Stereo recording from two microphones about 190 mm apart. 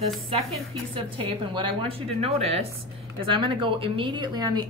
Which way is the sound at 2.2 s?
30° right (ahead or behind).